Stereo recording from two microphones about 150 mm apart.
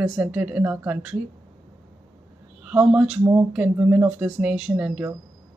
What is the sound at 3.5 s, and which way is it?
Speech, 10° right (ahead or behind).